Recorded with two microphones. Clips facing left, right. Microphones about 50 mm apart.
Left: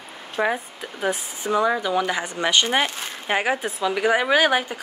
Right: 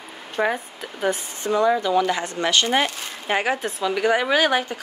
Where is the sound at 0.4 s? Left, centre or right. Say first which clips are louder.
Even; centre.